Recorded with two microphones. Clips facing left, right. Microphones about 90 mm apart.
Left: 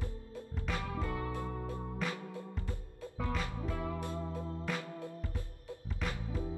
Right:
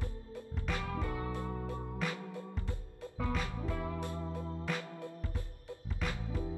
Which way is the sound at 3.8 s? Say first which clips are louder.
Left 1 dB; 20° left (ahead or behind).